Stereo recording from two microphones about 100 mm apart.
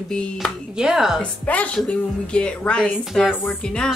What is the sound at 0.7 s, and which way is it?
Speech, 5° right (ahead or behind).